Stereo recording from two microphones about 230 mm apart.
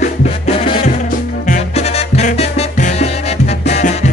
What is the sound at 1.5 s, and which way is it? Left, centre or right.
Music, left.